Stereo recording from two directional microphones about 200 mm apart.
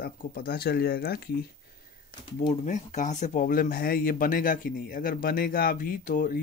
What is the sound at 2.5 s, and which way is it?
Speech, 35° left (ahead or behind).